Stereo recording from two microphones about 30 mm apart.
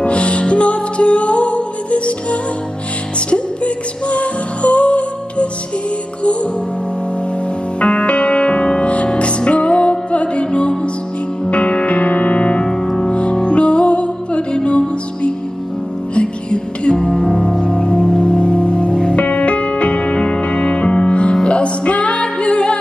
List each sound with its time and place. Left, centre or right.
0.0 s music: left
3.3 s music: left
7.8 s music: left